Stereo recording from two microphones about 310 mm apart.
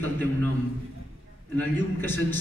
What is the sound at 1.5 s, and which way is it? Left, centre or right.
Speech, centre.